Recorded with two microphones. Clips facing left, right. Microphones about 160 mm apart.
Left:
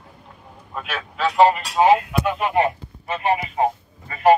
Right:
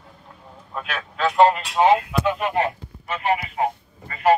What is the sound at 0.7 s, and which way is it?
Speech, centre (ahead or behind).